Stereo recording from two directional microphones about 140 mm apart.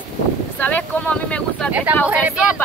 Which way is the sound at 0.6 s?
10° left (ahead or behind).